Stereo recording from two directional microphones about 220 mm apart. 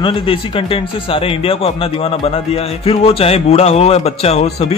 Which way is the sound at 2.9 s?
25° left (ahead or behind).